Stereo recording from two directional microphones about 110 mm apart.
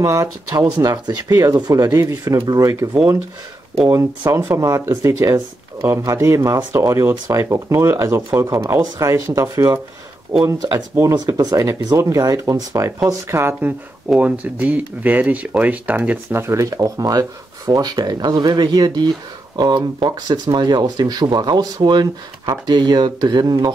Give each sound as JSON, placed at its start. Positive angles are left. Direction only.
{"t": 0.0, "sound": "speech", "side_deg": -30}
{"t": 4.5, "sound": "speech", "side_deg": -30}
{"t": 11.1, "sound": "speech", "side_deg": -35}